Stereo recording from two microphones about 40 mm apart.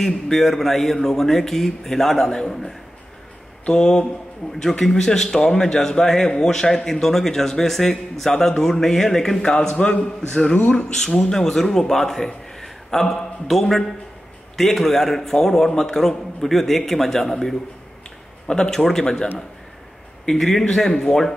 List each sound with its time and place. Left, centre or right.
0.0 s a man's voice: centre
10.6 s speech: left
10.9 s a man's voice: centre
20.2 s a man's voice: centre